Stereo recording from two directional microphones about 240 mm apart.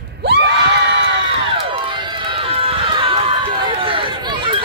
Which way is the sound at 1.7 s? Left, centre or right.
Centre.